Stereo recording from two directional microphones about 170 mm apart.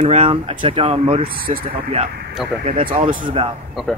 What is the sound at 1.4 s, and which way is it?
Speech, 60° right (ahead or behind).